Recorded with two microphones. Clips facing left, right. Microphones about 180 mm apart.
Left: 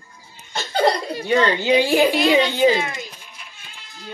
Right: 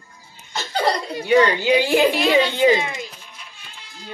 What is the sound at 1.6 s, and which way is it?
Speech, 15° left (ahead or behind).